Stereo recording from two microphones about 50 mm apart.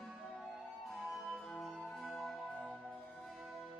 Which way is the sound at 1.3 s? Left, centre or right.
Centre.